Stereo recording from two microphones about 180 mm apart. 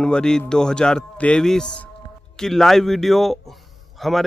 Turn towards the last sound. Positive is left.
turn(degrees=0)  # may be behind; listen again after turning